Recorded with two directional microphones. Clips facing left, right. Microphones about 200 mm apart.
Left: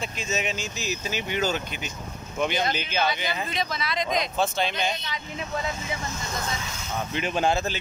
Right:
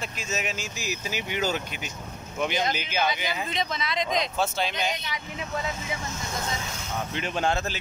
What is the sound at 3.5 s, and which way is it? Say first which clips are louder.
Speech: even; 20° right (ahead or behind).